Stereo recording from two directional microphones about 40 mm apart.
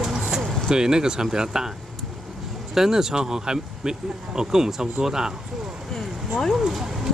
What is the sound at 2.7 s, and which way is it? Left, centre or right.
Speech, centre.